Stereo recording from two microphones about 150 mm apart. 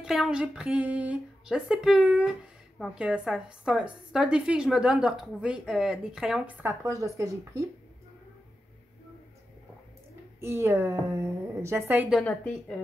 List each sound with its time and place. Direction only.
0.0 s a woman's voice: centre (ahead or behind); by 7.6 s 20° right (ahead or behind)
10.4 s a woman's voice: 15° right (ahead or behind)
12.2 s a woman's voice: 5° left (ahead or behind)